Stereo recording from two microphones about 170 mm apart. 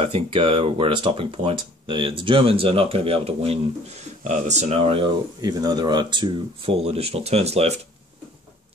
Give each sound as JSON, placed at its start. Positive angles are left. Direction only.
{"t": 0.0, "sound": "speech", "side_deg": -35}